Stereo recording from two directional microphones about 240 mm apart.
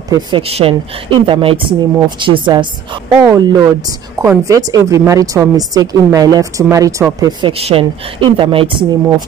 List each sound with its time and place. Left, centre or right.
0.1 s a woman's voice: right